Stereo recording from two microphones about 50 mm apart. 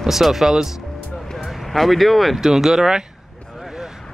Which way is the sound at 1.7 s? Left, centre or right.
Centre.